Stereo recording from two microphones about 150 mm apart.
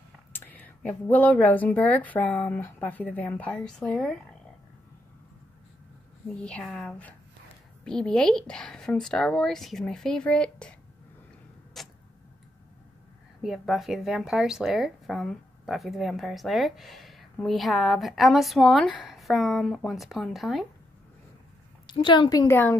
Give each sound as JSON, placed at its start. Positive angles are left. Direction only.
{"t": 0.3, "sound": "speech", "side_deg": 10}
{"t": 6.4, "sound": "speech", "side_deg": 5}
{"t": 11.7, "sound": "a sound", "side_deg": 0}
{"t": 13.4, "sound": "speech", "side_deg": 0}
{"t": 21.8, "sound": "a woman's voice", "side_deg": 30}
{"t": 22.5, "sound": "speech", "side_deg": 15}